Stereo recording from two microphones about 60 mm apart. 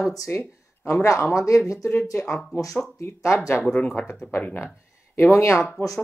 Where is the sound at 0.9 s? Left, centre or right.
Left.